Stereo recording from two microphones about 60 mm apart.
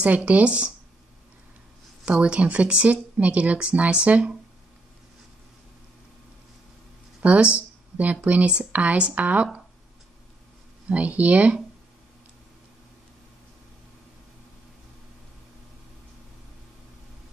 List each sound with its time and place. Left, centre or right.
0.0 s speech: right
2.0 s speech: centre
7.2 s speech: centre
10.9 s speech: right